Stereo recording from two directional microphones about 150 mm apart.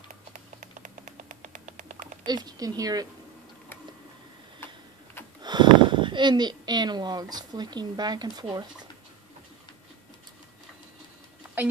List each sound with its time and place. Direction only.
0.1 s a sound: 55° right (ahead or behind)
2.2 s a woman's voice: 25° right (ahead or behind)
5.4 s speech: 30° right (ahead or behind)